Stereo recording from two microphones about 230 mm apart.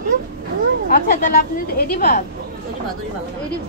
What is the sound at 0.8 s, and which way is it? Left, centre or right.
A woman's voice, left.